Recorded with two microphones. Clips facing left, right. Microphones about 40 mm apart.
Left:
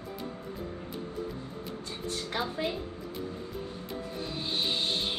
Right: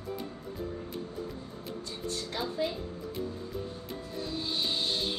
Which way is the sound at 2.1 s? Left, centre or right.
Left.